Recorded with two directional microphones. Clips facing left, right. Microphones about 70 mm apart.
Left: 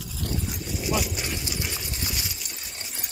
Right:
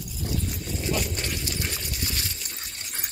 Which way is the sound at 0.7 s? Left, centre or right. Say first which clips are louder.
Left 2 dB; centre.